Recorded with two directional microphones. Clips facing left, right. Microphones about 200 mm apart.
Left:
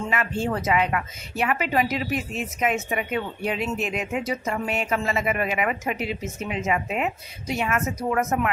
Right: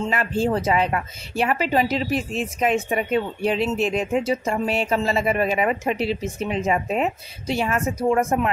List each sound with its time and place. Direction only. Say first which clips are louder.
0.0 s a woman's voice: right 4 dB; 35° right (ahead or behind)